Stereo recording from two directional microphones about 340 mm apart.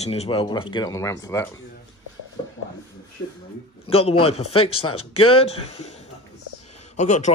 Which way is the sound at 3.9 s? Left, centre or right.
Centre.